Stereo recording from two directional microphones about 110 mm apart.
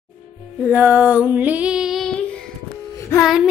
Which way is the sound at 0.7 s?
15° right (ahead or behind).